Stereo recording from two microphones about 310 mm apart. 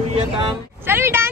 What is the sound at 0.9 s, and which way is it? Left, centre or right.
Speech, centre.